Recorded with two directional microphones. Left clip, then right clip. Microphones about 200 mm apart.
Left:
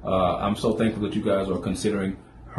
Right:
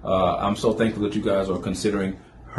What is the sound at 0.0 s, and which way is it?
Speech, 15° right (ahead or behind).